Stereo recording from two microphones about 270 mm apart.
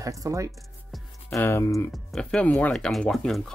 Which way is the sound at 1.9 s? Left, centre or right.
Centre.